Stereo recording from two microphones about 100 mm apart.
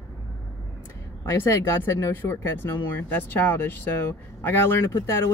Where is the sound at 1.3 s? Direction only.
30° left (ahead or behind).